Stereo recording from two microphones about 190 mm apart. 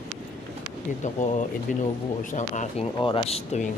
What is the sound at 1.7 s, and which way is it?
Speech, 45° left (ahead or behind).